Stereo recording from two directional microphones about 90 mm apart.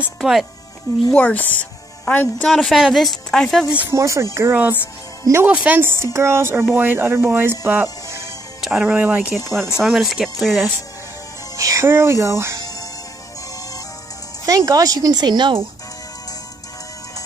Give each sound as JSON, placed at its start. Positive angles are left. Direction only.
{"t": 0.2, "sound": "speech", "side_deg": 0}
{"t": 1.1, "sound": "speech", "side_deg": 15}
{"t": 2.5, "sound": "speech", "side_deg": 0}
{"t": 3.9, "sound": "speech", "side_deg": -35}
{"t": 8.5, "sound": "music", "side_deg": -5}
{"t": 8.8, "sound": "speech", "side_deg": -20}
{"t": 9.3, "sound": "speech", "side_deg": 0}
{"t": 11.5, "sound": "speech", "side_deg": -40}
{"t": 14.4, "sound": "speech", "side_deg": -40}